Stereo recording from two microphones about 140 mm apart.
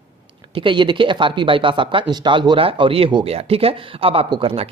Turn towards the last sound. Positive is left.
turn(degrees=-40)  # may be behind; listen again after turning